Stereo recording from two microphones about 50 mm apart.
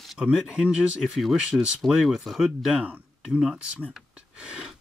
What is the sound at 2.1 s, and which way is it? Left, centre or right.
Speech, centre.